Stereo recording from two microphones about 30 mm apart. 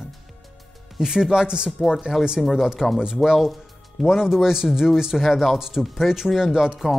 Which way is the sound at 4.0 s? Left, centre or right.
Centre.